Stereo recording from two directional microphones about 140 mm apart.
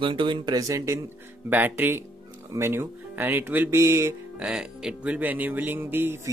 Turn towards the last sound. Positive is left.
turn(degrees=-15)  # may be behind; listen again after turning